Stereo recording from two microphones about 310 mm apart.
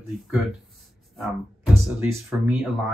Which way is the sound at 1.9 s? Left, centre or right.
Centre.